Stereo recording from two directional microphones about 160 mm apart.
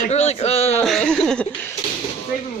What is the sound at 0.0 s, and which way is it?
Speech, 45° left (ahead or behind).